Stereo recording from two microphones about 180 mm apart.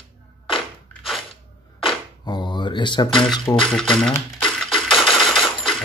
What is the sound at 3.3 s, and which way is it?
Speech, 25° left (ahead or behind).